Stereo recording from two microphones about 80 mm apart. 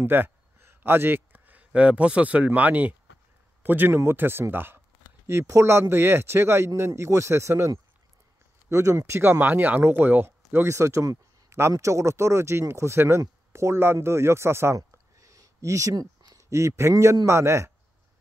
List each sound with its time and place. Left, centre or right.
0.0 s a man's voice: right
5.2 s speech: right
15.1 s a sound: right
16.9 s speech: right